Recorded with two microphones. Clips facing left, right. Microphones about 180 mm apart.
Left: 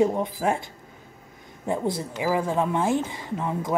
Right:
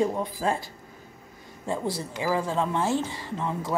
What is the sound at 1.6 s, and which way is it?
A woman's voice, 20° left (ahead or behind).